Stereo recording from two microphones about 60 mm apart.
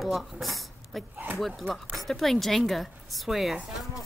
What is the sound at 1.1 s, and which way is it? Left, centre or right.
Speech, right.